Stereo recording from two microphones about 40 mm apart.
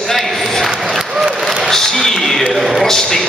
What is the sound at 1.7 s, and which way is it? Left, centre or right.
A man's voice, centre.